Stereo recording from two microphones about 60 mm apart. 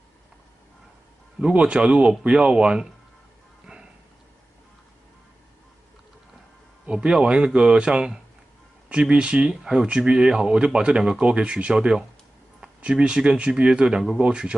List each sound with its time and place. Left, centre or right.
1.4 s speech: centre
6.9 s speech: centre